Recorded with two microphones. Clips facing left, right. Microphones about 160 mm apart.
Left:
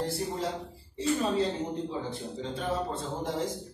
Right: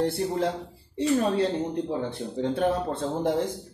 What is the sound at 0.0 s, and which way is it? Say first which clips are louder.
Speech: right 6 dB; 60° right (ahead or behind).